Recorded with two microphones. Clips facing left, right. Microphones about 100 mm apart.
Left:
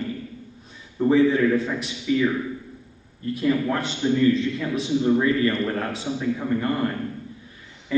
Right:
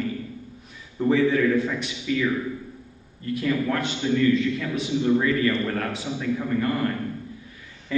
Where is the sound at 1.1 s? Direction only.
30° left (ahead or behind).